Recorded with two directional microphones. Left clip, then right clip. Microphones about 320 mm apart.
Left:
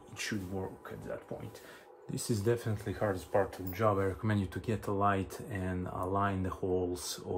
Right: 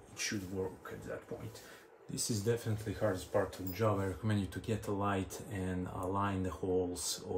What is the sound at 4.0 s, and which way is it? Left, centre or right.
Speech, centre.